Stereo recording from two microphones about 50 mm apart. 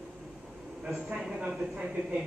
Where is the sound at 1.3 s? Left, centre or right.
Centre.